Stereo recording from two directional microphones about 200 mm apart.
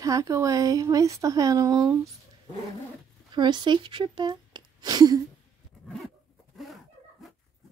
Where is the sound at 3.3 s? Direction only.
20° right (ahead or behind).